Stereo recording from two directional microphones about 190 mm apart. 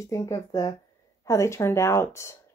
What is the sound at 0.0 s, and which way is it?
Speech, 15° left (ahead or behind).